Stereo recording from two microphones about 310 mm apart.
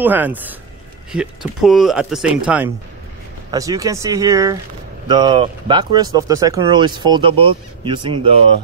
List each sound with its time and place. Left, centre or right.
0.0 s speech: centre